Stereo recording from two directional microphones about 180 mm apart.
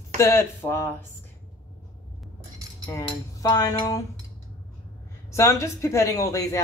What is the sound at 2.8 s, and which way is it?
Cutlery, 15° left (ahead or behind).